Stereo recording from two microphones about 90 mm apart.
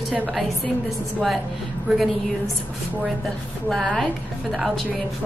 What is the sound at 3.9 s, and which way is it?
Speech, 10° left (ahead or behind).